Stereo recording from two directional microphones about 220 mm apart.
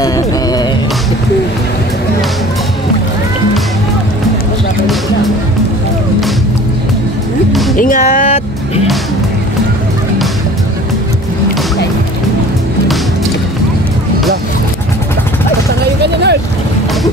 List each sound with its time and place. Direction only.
0.0 s music: 15° left (ahead or behind)
7.7 s music: 35° left (ahead or behind)
15.8 s a sound: 50° right (ahead or behind)